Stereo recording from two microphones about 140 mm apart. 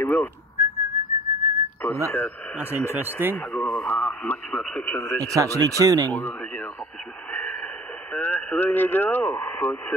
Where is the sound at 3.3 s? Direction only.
10° left (ahead or behind).